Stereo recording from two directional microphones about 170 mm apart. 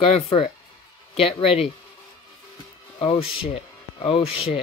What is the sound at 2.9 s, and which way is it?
Speech, 35° left (ahead or behind).